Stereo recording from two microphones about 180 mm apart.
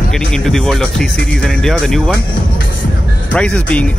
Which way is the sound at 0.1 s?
5° left (ahead or behind).